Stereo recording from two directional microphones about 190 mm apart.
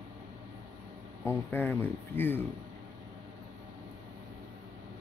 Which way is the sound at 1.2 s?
10° left (ahead or behind).